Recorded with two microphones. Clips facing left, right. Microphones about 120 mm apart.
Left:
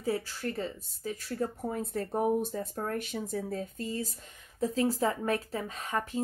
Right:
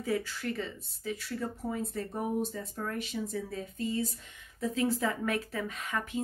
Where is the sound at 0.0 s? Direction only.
35° left (ahead or behind).